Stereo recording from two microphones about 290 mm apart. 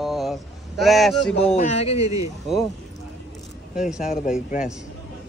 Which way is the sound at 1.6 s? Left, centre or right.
Left.